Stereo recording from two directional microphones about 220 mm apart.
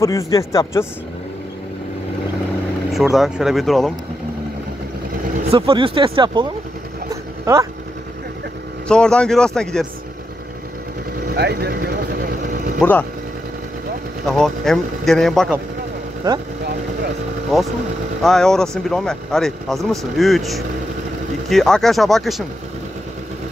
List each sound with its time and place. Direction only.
0.0 s a man's voice: 15° left (ahead or behind)
2.9 s speech: centre (ahead or behind)
5.5 s speech: 25° right (ahead or behind)
8.8 s speech: 5° left (ahead or behind)
11.3 s speech: 50° right (ahead or behind)
12.8 s speech: 5° left (ahead or behind)
14.2 s speech: centre (ahead or behind)
16.2 s speech: 20° right (ahead or behind)
17.5 s speech: centre (ahead or behind)